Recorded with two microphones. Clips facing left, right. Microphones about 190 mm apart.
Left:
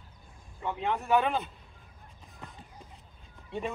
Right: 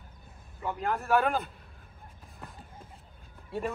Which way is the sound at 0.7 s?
Centre (ahead or behind).